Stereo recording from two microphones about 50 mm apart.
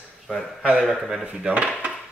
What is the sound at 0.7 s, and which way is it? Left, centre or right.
Speech, centre.